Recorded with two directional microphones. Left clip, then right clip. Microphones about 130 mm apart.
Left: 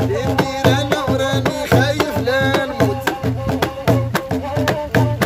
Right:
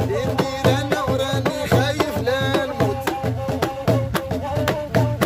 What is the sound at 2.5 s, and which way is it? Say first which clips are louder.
Music: left 3 dB; 25° left (ahead or behind).